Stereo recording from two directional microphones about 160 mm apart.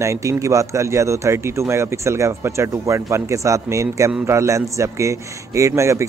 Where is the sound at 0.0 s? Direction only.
20° right (ahead or behind).